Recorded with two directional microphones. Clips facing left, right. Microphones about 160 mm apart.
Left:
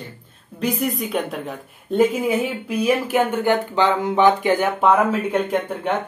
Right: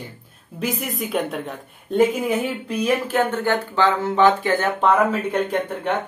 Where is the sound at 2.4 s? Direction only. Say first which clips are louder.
Left 2 dB; 10° left (ahead or behind).